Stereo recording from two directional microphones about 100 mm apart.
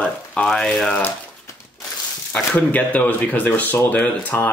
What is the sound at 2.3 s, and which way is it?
Speech, 15° left (ahead or behind).